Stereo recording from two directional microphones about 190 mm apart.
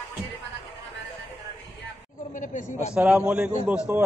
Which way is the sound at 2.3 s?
40° left (ahead or behind).